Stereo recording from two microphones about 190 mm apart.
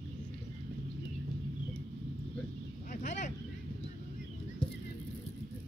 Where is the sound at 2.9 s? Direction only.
40° left (ahead or behind).